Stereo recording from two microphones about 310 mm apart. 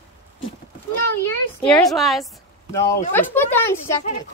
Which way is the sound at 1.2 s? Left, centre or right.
Centre.